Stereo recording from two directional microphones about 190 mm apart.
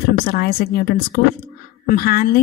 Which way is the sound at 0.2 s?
50° left (ahead or behind).